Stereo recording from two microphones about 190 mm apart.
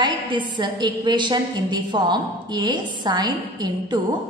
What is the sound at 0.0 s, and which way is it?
A woman's voice, 25° right (ahead or behind).